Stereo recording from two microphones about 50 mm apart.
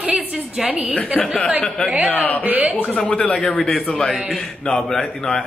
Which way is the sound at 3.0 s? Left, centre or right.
Centre.